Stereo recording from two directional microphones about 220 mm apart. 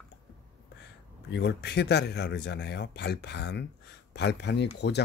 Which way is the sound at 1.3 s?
50° left (ahead or behind).